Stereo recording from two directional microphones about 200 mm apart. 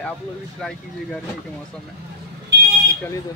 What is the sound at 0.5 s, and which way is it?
Speech, centre (ahead or behind).